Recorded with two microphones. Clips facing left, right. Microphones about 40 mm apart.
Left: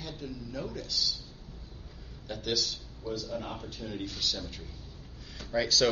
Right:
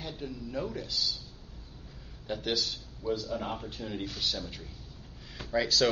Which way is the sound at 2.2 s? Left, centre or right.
Centre.